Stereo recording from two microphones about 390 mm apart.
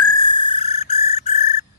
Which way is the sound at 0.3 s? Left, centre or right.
Centre.